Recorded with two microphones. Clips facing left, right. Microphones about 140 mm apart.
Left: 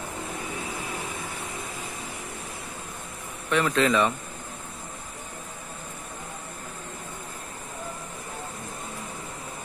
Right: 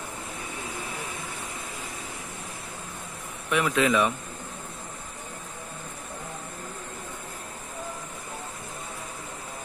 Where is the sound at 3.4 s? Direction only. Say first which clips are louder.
Left 1 dB; 10° right (ahead or behind).